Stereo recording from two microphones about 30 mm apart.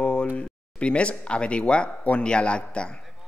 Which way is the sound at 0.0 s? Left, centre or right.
Left.